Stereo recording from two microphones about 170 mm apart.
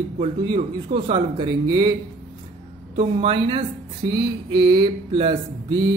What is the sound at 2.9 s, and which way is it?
Speech, 35° right (ahead or behind).